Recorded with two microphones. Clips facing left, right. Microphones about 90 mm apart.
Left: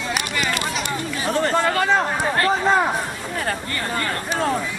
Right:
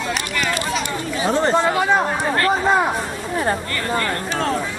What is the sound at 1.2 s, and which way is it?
Speech, 20° right (ahead or behind).